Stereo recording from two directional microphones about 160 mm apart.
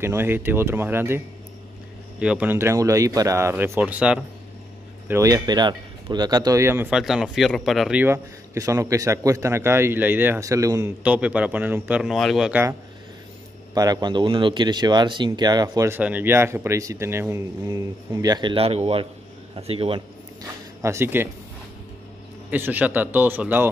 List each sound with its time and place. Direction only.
0.0 s a man's voice: 15° right (ahead or behind)
6.9 s speech: 5° right (ahead or behind)
8.0 s a man's voice: 20° right (ahead or behind)
11.1 s a man's voice: 10° right (ahead or behind)
13.7 s speech: 25° right (ahead or behind)
16.0 s a man's voice: 10° right (ahead or behind); by 20.0 s 35° right (ahead or behind)
20.8 s a man's voice: 15° right (ahead or behind)
22.5 s a man's voice: 10° right (ahead or behind)